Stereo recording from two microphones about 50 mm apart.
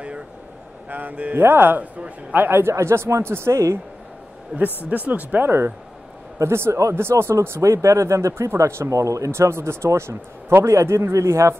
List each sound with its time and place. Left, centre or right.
0.8 s speech: right
1.3 s speech: right
2.3 s speech: right
2.7 s speech: right
4.5 s speech: right
6.3 s speech: right
7.0 s speech: right